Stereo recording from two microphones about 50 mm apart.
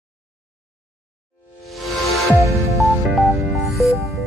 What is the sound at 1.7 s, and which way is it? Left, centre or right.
Music, centre.